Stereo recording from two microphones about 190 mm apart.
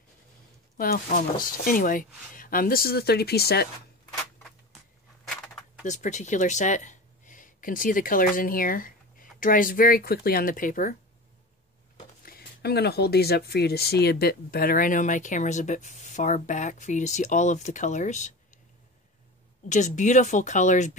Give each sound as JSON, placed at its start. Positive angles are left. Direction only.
{"t": 0.7, "sound": "speech", "side_deg": 50}
{"t": 5.9, "sound": "speech", "side_deg": 40}
{"t": 12.3, "sound": "speech", "side_deg": 55}
{"t": 19.7, "sound": "speech", "side_deg": 40}